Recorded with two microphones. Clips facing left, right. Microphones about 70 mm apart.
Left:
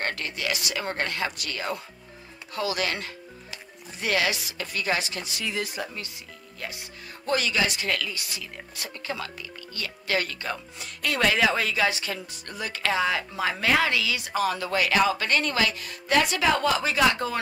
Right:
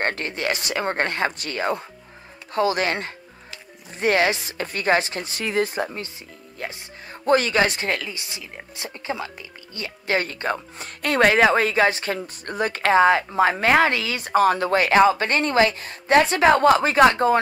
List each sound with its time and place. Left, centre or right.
0.0 s speech: right